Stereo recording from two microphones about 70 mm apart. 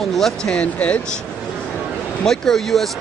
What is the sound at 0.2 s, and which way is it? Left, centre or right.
Speech, centre.